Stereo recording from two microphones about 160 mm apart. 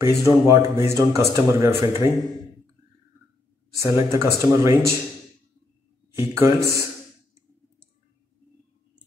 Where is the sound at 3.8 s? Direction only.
15° right (ahead or behind).